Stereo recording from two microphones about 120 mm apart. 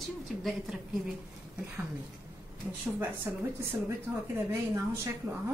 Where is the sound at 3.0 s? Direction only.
20° right (ahead or behind).